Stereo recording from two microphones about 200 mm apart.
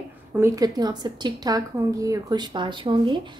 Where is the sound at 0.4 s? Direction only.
20° right (ahead or behind).